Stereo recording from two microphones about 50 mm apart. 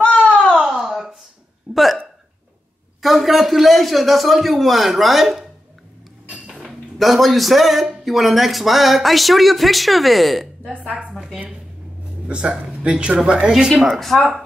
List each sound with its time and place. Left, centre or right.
0.0 s a sound: left
0.7 s a sound: centre
1.7 s speech: centre
3.0 s speech: centre
6.6 s speech: centre
12.3 s a man's voice: right
13.5 s speech: centre